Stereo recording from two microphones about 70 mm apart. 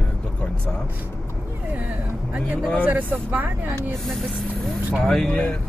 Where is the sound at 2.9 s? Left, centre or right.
Right.